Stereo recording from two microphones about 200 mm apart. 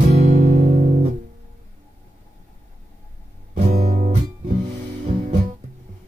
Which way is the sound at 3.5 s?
40° right (ahead or behind).